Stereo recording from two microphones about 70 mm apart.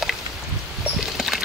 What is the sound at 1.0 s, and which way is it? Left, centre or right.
Dog, centre.